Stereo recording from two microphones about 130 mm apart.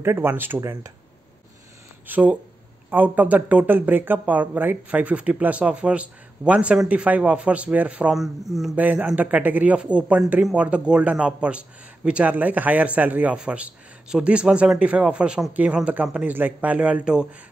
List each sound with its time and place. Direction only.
0.0 s speech: 20° right (ahead or behind)
2.0 s speech: 15° right (ahead or behind)